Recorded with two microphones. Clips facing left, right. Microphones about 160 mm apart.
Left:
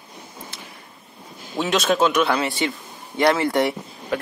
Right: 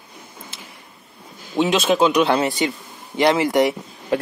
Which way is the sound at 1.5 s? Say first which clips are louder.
Right 3 dB; 15° right (ahead or behind).